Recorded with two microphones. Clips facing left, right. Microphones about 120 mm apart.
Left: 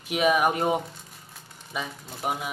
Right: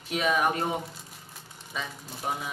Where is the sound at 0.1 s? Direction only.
15° left (ahead or behind).